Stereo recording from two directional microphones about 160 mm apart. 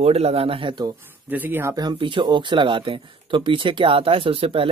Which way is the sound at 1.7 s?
30° right (ahead or behind).